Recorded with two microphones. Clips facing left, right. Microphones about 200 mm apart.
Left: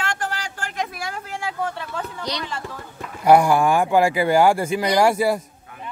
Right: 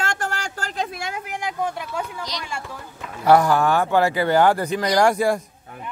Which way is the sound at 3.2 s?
10° left (ahead or behind).